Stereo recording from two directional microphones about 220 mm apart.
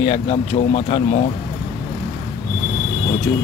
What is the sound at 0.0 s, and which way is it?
Speech, 30° left (ahead or behind).